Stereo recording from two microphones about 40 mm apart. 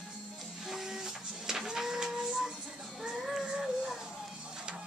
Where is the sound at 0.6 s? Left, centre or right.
Centre.